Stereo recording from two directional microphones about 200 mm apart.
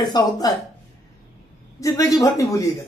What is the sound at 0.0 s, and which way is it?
Speech, 20° left (ahead or behind).